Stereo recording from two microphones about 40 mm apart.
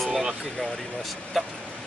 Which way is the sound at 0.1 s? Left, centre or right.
Centre.